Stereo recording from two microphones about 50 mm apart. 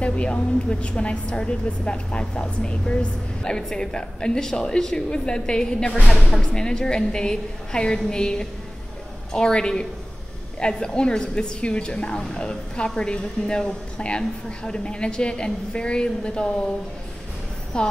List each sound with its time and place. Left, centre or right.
0.0 s a woman's voice: left
17.7 s a woman's voice: centre